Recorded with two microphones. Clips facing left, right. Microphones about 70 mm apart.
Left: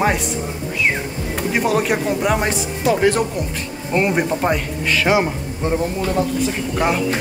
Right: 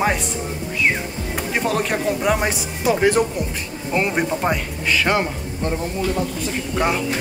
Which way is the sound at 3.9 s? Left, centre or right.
Centre.